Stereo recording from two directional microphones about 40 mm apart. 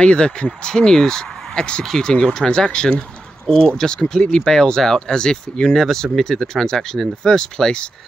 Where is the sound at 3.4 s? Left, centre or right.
Centre.